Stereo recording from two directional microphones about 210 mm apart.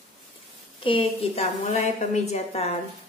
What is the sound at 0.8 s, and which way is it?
A woman's voice, 25° left (ahead or behind).